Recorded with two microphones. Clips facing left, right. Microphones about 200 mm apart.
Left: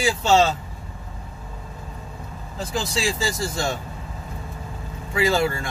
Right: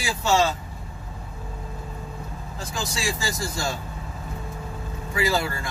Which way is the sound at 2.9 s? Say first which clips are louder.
Left 3 dB; 25° left (ahead or behind).